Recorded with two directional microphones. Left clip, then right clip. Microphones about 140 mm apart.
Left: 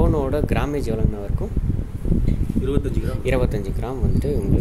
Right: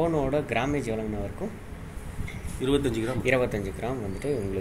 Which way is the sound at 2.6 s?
80° right.